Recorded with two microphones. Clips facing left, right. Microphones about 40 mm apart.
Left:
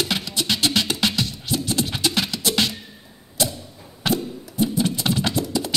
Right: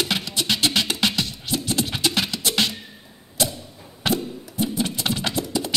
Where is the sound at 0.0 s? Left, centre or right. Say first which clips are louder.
Even; right.